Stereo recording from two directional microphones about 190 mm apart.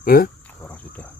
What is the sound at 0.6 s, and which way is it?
Cricket, 10° left (ahead or behind).